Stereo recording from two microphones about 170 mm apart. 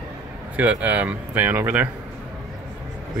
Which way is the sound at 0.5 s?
10° right (ahead or behind).